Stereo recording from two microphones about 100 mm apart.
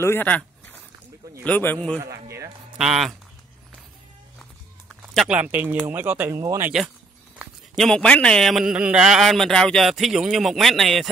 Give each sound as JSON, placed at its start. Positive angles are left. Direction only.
{"t": 0.0, "sound": "speech", "side_deg": 25}
{"t": 1.4, "sound": "a man's voice", "side_deg": 15}
{"t": 2.0, "sound": "speech", "side_deg": -30}
{"t": 2.8, "sound": "a man's voice", "side_deg": -5}
{"t": 5.3, "sound": "speech", "side_deg": -15}
{"t": 6.4, "sound": "speech", "side_deg": -30}
{"t": 7.7, "sound": "a man's voice", "side_deg": 5}